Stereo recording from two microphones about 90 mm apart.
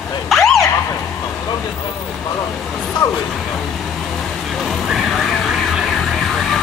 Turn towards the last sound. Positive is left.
turn(degrees=5)  # may be behind; listen again after turning